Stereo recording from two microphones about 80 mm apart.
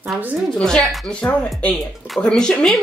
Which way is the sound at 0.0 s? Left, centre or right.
Centre.